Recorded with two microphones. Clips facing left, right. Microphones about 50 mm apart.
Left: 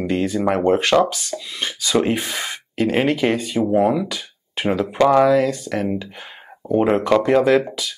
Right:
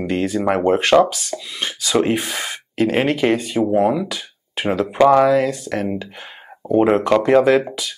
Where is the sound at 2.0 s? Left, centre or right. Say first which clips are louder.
Right 1 dB; centre.